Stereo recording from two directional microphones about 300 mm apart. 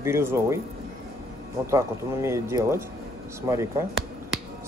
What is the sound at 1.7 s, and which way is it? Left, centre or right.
Speech, centre.